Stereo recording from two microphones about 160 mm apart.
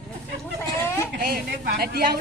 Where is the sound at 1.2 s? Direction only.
70° right (ahead or behind).